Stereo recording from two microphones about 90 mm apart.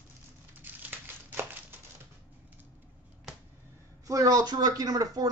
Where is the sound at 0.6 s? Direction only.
20° right (ahead or behind).